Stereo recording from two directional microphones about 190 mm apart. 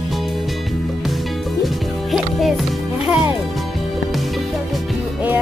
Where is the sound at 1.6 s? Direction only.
Centre (ahead or behind).